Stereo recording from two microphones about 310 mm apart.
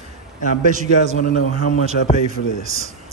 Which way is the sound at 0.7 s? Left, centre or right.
Right.